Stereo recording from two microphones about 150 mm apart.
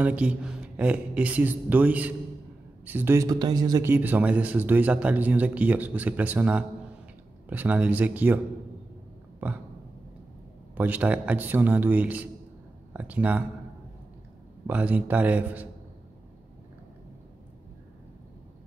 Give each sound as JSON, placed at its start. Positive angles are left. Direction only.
{"t": 0.0, "sound": "speech", "side_deg": -10}
{"t": 3.9, "sound": "speech", "side_deg": -10}
{"t": 10.7, "sound": "speech", "side_deg": -10}
{"t": 14.7, "sound": "speech", "side_deg": -10}